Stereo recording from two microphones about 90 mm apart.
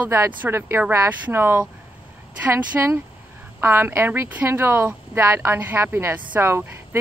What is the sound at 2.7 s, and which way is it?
Speech, 20° right (ahead or behind).